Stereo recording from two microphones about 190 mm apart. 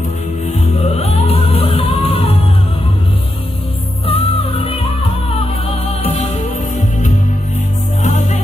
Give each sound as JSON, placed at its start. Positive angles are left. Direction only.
{"t": 0.9, "sound": "music", "side_deg": 35}
{"t": 4.0, "sound": "music", "side_deg": 30}
{"t": 6.0, "sound": "music", "side_deg": 30}
{"t": 8.0, "sound": "music", "side_deg": 35}